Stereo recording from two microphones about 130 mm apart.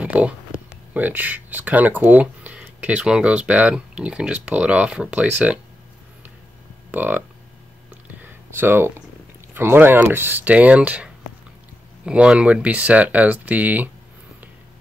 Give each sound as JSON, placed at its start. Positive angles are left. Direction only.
{"t": 0.0, "sound": "a sound", "side_deg": -10}
{"t": 0.9, "sound": "speech", "side_deg": -15}
{"t": 6.9, "sound": "speech", "side_deg": -15}
{"t": 8.5, "sound": "speech", "side_deg": -15}
{"t": 12.1, "sound": "speech", "side_deg": -10}